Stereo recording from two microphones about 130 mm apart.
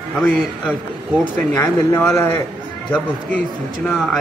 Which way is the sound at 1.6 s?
20° left (ahead or behind).